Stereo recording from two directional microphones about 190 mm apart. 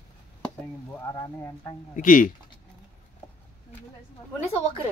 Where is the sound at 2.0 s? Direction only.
45° left (ahead or behind).